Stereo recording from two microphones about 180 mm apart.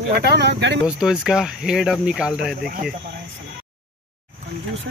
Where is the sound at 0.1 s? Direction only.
65° right (ahead or behind).